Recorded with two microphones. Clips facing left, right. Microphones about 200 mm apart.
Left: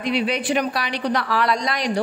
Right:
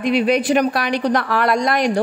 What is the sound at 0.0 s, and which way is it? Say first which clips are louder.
Speech: right 6 dB; 50° right (ahead or behind).